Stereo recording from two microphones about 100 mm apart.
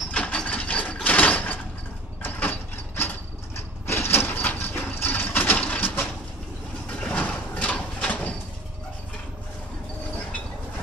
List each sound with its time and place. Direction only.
0.1 s wood: 10° left (ahead or behind)
1.0 s sliding door: 15° left (ahead or behind)
2.2 s mechanisms: 20° left (ahead or behind)
3.5 s a sound: 25° left (ahead or behind)